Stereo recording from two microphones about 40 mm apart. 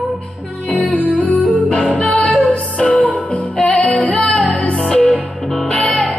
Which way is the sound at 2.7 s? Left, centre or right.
Left.